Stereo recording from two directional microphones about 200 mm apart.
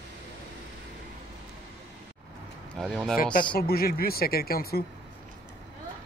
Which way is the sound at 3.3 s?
50° left (ahead or behind).